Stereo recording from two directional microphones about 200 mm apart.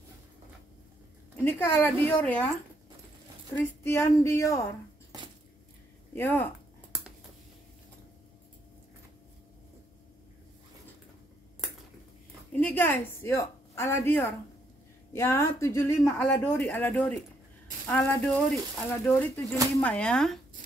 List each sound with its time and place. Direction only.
1.3 s speech: 10° left (ahead or behind)
3.5 s speech: 10° left (ahead or behind)
6.1 s speech: 10° left (ahead or behind)
12.5 s a woman's voice: 10° left (ahead or behind)